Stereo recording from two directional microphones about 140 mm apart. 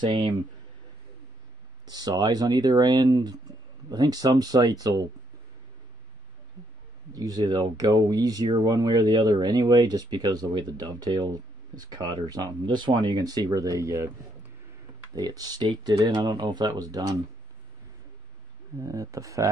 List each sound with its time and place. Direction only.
0.0 s speech: 35° right (ahead or behind)
1.9 s speech: 30° right (ahead or behind)
7.2 s speech: 25° right (ahead or behind)
15.1 s speech: 25° right (ahead or behind)
18.8 s speech: 25° right (ahead or behind)